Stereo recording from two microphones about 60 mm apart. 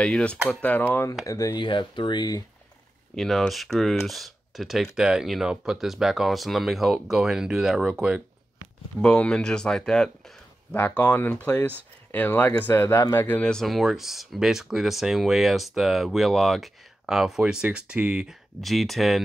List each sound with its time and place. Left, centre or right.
0.0 s speech: centre
1.2 s speech: left
3.2 s speech: centre
9.0 s speech: centre
10.7 s speech: left
12.7 s speech: left
13.4 s speech: centre
13.7 s speech: centre
18.6 s speech: centre